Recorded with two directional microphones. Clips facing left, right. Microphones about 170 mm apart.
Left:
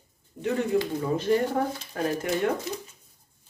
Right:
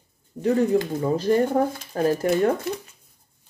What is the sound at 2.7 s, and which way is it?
Speech, 60° right (ahead or behind).